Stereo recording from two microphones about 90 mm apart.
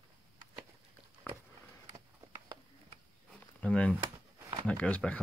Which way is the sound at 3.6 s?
10° left (ahead or behind).